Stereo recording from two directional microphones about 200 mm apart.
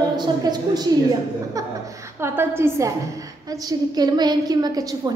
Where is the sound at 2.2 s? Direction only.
10° right (ahead or behind).